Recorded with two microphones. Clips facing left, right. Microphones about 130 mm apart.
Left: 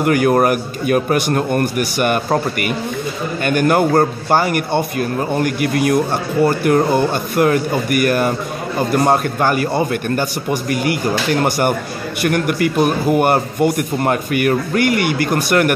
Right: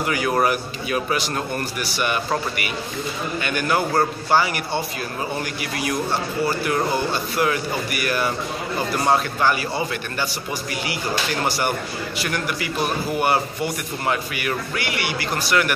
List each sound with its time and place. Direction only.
0.0 s a man's voice: 55° left (ahead or behind)